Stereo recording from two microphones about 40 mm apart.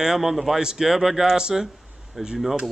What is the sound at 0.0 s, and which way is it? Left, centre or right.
Speech, centre.